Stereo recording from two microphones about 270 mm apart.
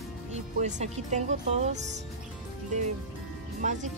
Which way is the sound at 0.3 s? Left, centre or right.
Right.